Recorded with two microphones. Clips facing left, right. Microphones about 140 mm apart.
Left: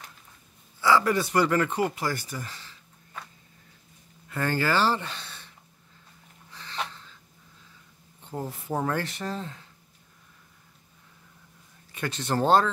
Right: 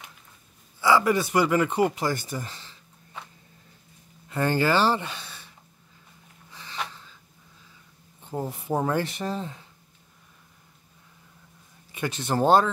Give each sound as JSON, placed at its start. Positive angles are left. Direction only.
{"t": 0.7, "sound": "speech", "side_deg": -15}
{"t": 4.3, "sound": "speech", "side_deg": -20}
{"t": 6.5, "sound": "a sound", "side_deg": -10}
{"t": 8.2, "sound": "speech", "side_deg": -15}
{"t": 11.9, "sound": "speech", "side_deg": -15}